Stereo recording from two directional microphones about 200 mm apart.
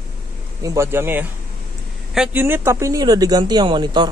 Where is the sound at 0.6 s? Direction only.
10° right (ahead or behind).